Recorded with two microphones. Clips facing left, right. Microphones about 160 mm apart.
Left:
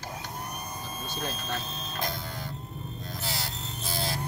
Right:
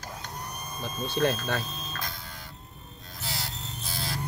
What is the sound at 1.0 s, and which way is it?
Speech, 60° right (ahead or behind).